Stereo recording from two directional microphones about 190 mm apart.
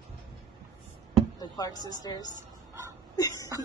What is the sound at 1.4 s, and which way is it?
Speech, 20° left (ahead or behind).